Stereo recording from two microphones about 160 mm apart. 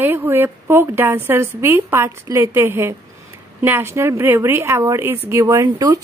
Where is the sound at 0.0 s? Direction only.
15° right (ahead or behind).